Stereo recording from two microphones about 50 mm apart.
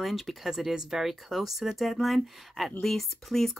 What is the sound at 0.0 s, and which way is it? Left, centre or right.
Speech, centre.